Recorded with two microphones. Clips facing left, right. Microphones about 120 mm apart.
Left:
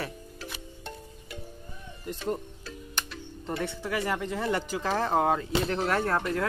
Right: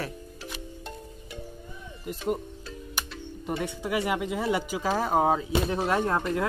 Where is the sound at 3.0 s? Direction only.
5° right (ahead or behind).